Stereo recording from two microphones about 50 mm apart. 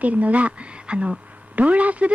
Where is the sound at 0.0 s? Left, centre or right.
Right.